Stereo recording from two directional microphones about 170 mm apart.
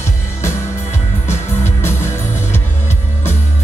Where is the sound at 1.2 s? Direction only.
15° left (ahead or behind).